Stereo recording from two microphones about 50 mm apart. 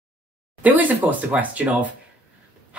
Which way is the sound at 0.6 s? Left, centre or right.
Right.